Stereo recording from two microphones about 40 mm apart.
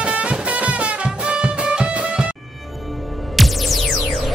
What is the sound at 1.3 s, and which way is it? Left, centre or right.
Music, right.